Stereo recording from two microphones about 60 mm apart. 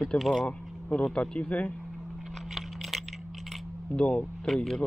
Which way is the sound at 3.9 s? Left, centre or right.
Centre.